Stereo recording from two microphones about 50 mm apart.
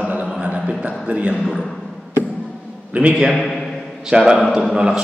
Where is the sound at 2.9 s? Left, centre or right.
Right.